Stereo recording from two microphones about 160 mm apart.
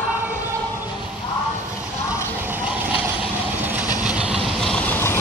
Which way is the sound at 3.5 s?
10° right (ahead or behind).